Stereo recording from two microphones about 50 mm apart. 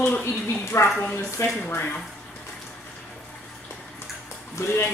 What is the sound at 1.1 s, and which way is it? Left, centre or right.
Speech, left.